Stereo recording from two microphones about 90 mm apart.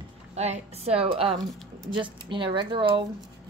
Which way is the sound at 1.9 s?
65° right (ahead or behind).